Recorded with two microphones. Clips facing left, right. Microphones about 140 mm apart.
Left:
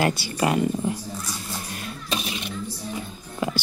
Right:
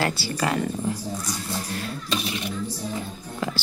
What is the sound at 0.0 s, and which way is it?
Speech, 20° left (ahead or behind).